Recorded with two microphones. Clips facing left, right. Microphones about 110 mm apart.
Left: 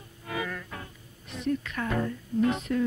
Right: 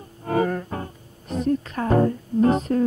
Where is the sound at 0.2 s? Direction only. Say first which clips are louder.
Right 12 dB; 45° right (ahead or behind).